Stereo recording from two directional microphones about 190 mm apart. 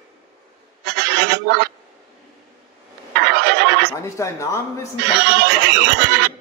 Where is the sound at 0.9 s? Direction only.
60° right (ahead or behind).